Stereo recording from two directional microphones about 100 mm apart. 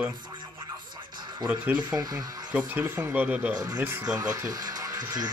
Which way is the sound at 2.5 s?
15° right (ahead or behind).